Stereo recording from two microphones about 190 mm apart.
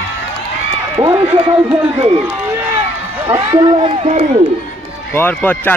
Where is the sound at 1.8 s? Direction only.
30° right (ahead or behind).